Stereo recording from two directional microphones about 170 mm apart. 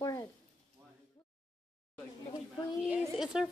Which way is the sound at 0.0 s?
20° left (ahead or behind).